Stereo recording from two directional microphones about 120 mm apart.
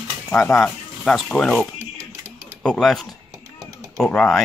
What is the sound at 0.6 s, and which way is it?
Speech, 5° left (ahead or behind).